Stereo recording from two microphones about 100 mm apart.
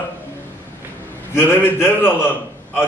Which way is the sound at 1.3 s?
20° left (ahead or behind).